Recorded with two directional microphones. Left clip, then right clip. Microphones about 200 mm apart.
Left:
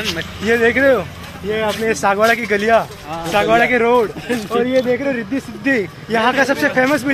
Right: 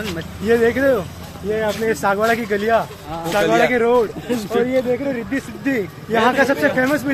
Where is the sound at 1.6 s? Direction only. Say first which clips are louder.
Left 3 dB; 30° left (ahead or behind).